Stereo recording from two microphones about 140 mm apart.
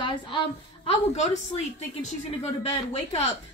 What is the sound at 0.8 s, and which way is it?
Speech, 55° left (ahead or behind).